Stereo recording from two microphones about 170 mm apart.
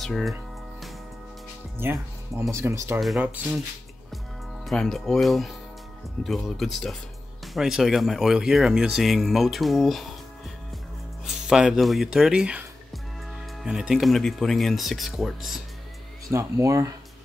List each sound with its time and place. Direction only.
0.0 s speech: centre (ahead or behind)
1.8 s speech: 15° right (ahead or behind)
3.0 s speech: 5° right (ahead or behind)
4.6 s speech: centre (ahead or behind)
11.2 s speech: 5° right (ahead or behind)
16.3 s speech: 20° right (ahead or behind)